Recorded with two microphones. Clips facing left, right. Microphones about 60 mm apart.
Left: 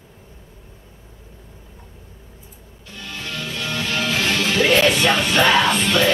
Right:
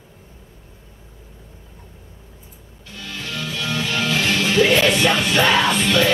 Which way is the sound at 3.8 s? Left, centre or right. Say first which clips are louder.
Even; left.